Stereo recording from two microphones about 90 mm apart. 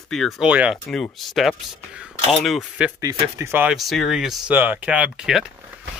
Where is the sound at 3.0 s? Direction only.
35° right (ahead or behind).